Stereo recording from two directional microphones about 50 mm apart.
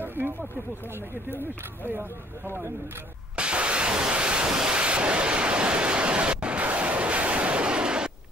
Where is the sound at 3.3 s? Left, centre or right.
Right.